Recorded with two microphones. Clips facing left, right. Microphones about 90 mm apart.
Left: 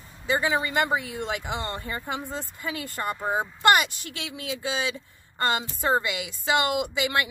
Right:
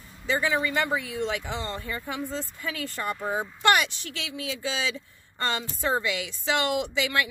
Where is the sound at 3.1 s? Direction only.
20° left (ahead or behind).